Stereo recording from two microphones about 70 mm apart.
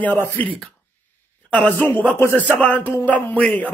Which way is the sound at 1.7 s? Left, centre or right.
Left.